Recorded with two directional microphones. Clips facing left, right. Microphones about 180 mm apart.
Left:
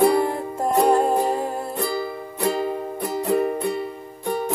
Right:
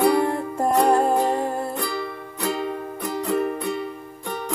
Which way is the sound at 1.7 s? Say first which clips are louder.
Left 3 dB; 30° left (ahead or behind).